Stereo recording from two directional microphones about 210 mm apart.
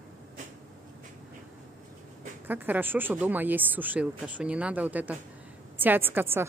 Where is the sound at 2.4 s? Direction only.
10° right (ahead or behind).